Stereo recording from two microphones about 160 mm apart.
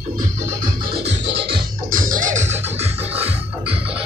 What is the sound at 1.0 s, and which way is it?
Music, 90° right.